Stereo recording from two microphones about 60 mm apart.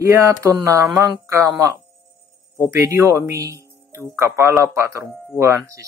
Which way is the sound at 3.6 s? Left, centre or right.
Right.